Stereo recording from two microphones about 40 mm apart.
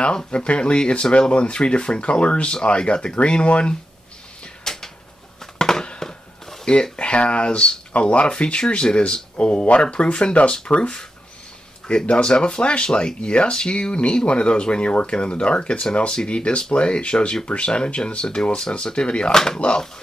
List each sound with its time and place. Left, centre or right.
0.0 s speech: left
4.6 s a sound: centre
6.6 s speech: left
12.1 s speech: left
19.3 s speech: centre